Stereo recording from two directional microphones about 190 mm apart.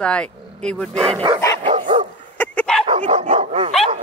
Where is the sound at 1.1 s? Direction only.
25° right (ahead or behind).